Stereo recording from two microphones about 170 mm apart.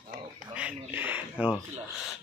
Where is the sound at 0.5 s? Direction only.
10° right (ahead or behind).